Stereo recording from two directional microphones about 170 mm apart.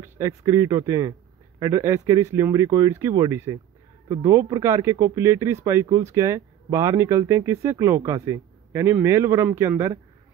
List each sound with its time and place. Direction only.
0.0 s speech: 20° right (ahead or behind)